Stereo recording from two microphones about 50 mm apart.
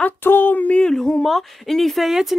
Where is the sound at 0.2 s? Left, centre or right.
Left.